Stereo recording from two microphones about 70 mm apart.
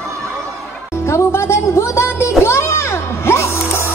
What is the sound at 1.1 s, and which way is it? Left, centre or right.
Music, left.